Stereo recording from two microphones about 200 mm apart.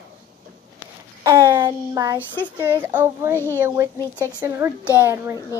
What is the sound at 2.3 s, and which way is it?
Speech, 10° left (ahead or behind).